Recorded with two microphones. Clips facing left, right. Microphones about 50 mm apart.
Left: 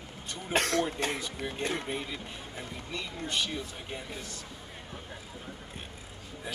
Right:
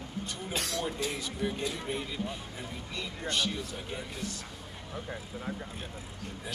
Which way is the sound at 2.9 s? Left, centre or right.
Centre.